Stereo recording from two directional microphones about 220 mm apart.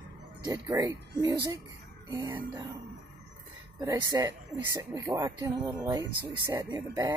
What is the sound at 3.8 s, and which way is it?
Speech, 20° right (ahead or behind).